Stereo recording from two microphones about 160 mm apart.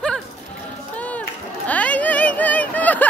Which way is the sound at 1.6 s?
10° left (ahead or behind).